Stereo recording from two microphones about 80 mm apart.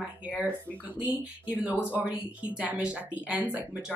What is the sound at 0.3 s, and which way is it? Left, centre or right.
Speech, centre.